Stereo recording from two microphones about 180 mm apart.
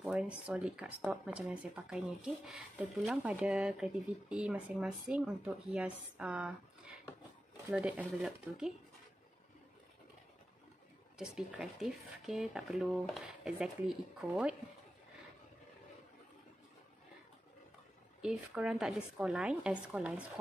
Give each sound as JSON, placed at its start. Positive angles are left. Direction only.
{"t": 0.0, "sound": "speech", "side_deg": -5}
{"t": 7.7, "sound": "speech", "side_deg": -5}
{"t": 11.1, "sound": "speech", "side_deg": -5}
{"t": 18.2, "sound": "speech", "side_deg": -5}